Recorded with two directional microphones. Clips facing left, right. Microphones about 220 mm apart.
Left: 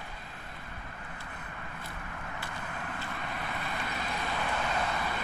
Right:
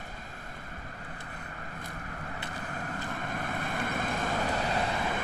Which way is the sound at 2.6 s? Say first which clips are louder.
Right 4 dB; 40° right (ahead or behind).